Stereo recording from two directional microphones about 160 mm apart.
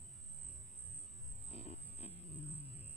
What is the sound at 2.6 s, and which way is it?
Music, 40° left (ahead or behind).